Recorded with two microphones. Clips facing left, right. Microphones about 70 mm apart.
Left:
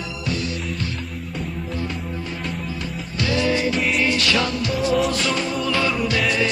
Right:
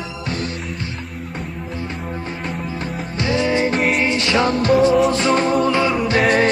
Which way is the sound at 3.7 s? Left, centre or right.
Right.